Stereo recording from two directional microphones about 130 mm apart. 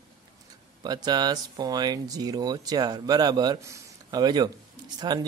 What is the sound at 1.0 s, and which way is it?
Speech, 30° right (ahead or behind).